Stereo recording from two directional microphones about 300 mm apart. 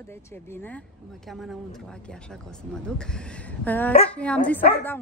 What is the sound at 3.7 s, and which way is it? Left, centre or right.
Speech, centre.